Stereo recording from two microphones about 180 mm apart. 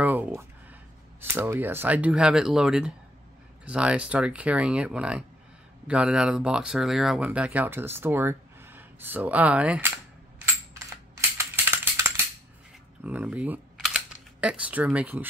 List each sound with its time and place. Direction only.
0.0 s a sound: 10° right (ahead or behind)
1.2 s speech: 10° right (ahead or behind)
10.4 s coin: 15° right (ahead or behind)
13.0 s speech: 10° right (ahead or behind)